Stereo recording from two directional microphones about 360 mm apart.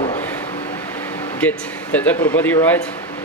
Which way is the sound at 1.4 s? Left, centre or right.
Centre.